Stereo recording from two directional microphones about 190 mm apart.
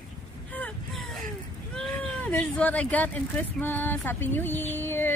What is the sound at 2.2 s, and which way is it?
A woman's voice, 5° left (ahead or behind).